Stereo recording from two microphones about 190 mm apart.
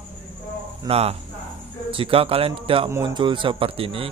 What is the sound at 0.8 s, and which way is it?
A man's voice, 35° right (ahead or behind).